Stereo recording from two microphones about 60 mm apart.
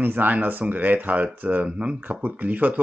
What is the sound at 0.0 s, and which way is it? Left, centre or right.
Speech, right.